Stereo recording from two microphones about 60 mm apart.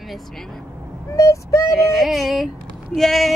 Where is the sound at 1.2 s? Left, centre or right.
Left.